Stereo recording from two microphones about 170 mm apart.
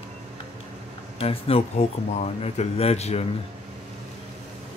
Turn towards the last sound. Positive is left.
turn(degrees=40)  # may be behind; listen again after turning